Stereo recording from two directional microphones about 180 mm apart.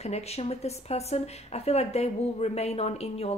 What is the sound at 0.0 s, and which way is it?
Speech, 35° left (ahead or behind).